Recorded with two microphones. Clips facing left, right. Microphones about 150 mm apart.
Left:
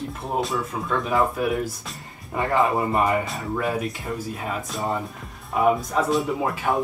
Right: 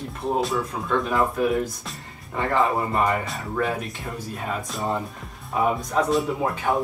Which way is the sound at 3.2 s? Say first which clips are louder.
Even; 5° left (ahead or behind).